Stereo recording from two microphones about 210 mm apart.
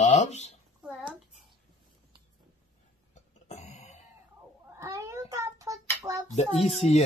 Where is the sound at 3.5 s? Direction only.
35° left (ahead or behind).